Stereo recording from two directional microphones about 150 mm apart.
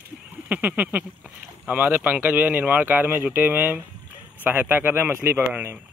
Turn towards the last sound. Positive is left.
turn(degrees=-15)  # may be behind; listen again after turning